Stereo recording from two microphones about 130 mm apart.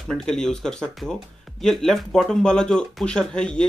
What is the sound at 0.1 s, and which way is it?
Speech, 5° left (ahead or behind).